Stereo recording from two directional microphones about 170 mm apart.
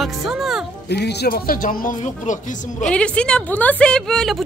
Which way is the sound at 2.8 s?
5° left (ahead or behind).